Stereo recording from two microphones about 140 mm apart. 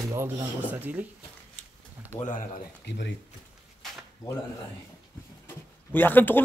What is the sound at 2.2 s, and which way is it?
Speech, 70° left (ahead or behind).